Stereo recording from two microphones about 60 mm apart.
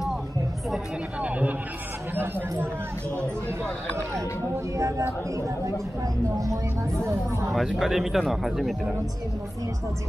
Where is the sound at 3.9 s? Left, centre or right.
Right.